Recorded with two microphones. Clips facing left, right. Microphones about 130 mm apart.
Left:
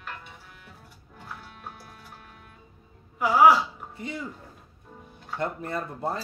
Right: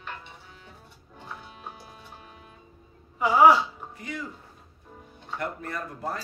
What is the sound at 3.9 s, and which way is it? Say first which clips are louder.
Speech: left 2 dB; 25° left (ahead or behind).